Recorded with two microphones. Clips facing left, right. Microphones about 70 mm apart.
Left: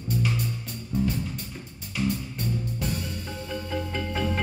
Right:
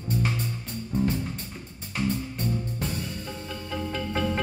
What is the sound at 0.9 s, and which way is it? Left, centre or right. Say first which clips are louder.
Music: right 1 dB; right.